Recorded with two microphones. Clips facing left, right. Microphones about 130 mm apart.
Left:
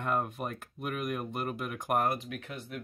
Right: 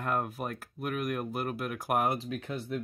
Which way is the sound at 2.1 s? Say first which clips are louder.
Right 3 dB; 30° right (ahead or behind).